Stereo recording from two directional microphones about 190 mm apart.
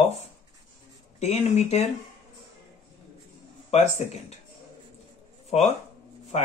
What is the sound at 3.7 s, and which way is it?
Speech, 35° left (ahead or behind).